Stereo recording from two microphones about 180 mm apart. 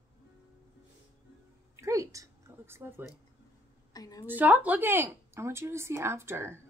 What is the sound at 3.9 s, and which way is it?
Speech, 20° left (ahead or behind).